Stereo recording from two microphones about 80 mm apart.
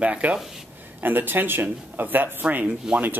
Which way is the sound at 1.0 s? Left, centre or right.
Right.